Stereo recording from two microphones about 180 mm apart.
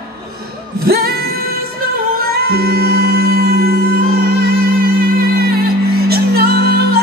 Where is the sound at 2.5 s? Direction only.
60° right (ahead or behind).